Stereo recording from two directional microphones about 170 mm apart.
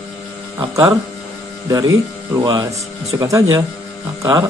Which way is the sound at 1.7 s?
20° right (ahead or behind).